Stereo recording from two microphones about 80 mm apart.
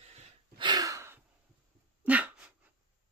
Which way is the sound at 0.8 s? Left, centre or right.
Right.